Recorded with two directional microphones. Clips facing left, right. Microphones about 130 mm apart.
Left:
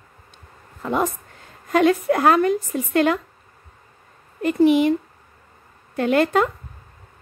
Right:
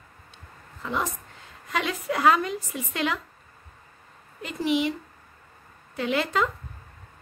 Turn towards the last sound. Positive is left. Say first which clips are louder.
# left 7 dB
turn(degrees=50)  # may be behind; listen again after turning